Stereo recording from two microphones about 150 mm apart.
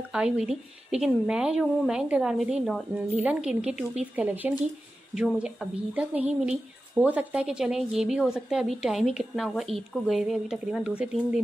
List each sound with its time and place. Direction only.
0.1 s a woman's voice: 5° right (ahead or behind)